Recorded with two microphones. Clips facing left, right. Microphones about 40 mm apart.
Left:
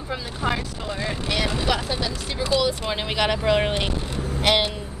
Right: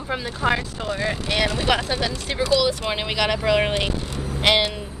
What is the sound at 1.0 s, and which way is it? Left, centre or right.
Speech, right.